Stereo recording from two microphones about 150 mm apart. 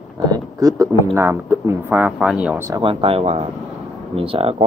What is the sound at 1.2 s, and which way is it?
Speech, 15° right (ahead or behind).